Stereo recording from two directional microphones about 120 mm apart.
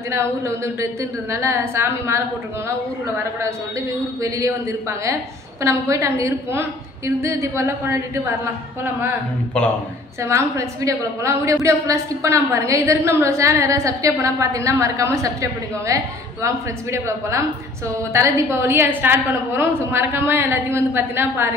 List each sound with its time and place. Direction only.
1.3 s a woman's voice: 20° right (ahead or behind)
4.2 s a woman's voice: 25° right (ahead or behind)
10.2 s a woman's voice: 25° right (ahead or behind)